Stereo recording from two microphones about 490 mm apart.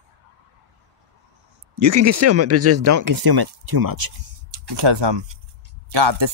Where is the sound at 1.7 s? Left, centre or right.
Right.